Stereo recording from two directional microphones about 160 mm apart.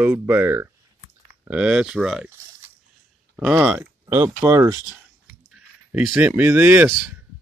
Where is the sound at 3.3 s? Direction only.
5° right (ahead or behind).